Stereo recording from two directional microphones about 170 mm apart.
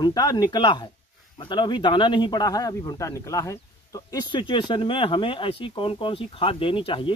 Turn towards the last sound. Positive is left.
turn(degrees=30)  # may be behind; listen again after turning